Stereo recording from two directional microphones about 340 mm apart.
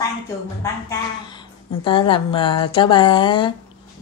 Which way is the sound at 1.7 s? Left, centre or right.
Centre.